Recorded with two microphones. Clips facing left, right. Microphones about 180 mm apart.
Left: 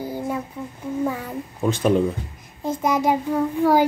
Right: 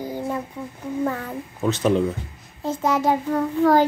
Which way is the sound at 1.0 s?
10° left (ahead or behind).